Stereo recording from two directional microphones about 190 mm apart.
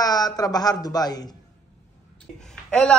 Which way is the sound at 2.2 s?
5° left (ahead or behind).